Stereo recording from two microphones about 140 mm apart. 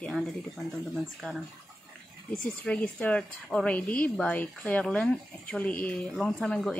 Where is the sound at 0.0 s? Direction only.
5° left (ahead or behind).